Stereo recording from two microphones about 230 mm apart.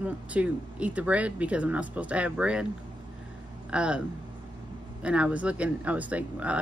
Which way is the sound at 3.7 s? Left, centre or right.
Centre.